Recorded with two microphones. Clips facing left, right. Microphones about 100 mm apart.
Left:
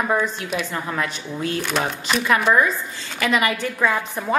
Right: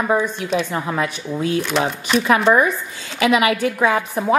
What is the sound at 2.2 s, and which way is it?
Speech, 20° right (ahead or behind).